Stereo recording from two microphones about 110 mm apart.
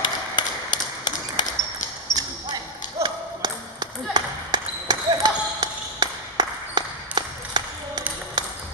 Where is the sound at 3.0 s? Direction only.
45° right (ahead or behind).